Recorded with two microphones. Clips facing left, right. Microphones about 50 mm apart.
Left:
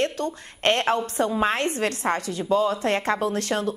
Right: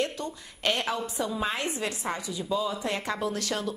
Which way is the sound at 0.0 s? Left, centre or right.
Left.